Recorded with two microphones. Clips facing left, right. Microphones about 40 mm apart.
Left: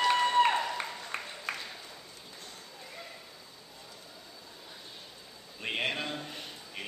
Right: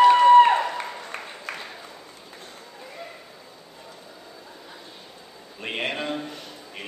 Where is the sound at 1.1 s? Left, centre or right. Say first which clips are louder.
Right 2 dB; centre.